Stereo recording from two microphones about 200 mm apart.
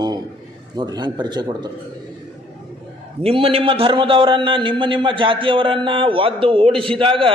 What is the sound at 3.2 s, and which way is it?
A man's voice, 30° right (ahead or behind).